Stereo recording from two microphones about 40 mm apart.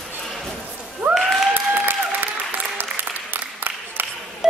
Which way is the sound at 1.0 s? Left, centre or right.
Right.